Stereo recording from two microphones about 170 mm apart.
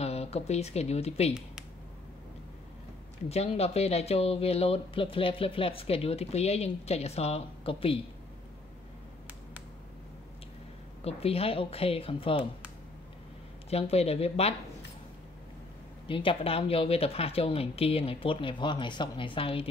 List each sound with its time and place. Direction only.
0.0 s a woman's voice: 40° left (ahead or behind)
3.3 s speech: 40° left (ahead or behind)
11.1 s speech: 35° left (ahead or behind)
13.7 s speech: 35° left (ahead or behind)
16.1 s speech: 30° left (ahead or behind)